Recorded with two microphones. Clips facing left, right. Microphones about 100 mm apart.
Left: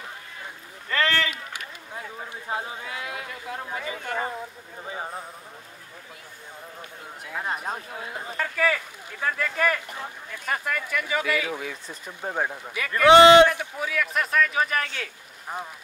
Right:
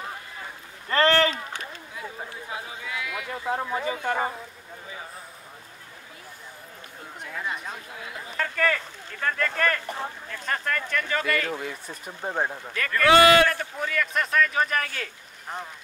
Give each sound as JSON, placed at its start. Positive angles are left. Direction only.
{"t": 0.8, "sound": "a sound", "side_deg": -35}
{"t": 2.5, "sound": "run", "side_deg": 35}
{"t": 3.3, "sound": "a sound", "side_deg": -35}
{"t": 7.4, "sound": "speech", "side_deg": 40}
{"t": 8.4, "sound": "a sound", "side_deg": 5}
{"t": 9.8, "sound": "speech", "side_deg": -25}
{"t": 10.3, "sound": "speech", "side_deg": 10}
{"t": 11.9, "sound": "speech", "side_deg": -10}
{"t": 12.6, "sound": "a man's voice", "side_deg": 10}